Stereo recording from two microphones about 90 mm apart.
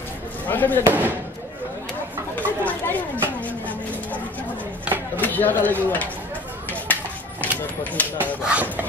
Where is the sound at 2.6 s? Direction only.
20° left (ahead or behind).